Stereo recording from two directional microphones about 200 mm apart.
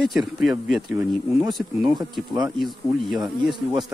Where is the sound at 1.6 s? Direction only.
5° right (ahead or behind).